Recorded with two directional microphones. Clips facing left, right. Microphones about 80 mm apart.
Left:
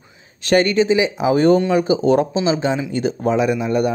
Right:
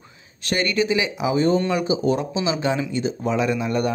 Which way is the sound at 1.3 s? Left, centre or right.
Left.